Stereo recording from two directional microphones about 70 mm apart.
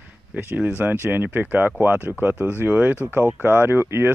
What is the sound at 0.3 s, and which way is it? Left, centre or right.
Speech, right.